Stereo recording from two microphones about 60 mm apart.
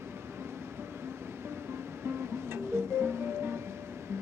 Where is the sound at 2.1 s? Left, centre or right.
Right.